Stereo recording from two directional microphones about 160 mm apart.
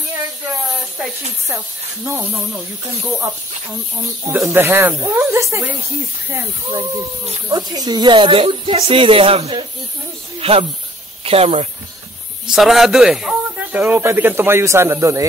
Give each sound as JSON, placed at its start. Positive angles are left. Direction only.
{"t": 2.0, "sound": "speech", "side_deg": -15}
{"t": 4.5, "sound": "speech", "side_deg": -15}
{"t": 12.4, "sound": "speech", "side_deg": 0}